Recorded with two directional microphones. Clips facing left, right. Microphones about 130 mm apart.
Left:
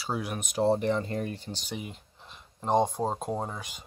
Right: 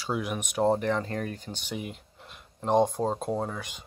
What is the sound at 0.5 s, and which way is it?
Speech, 45° right (ahead or behind).